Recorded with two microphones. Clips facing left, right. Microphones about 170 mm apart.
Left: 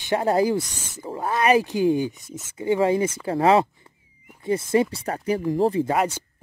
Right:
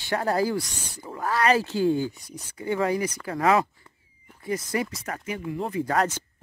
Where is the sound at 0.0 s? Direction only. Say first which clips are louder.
Left 4 dB; 20° left (ahead or behind).